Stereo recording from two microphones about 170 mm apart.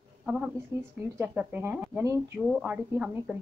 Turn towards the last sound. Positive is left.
turn(degrees=-5)  # may be behind; listen again after turning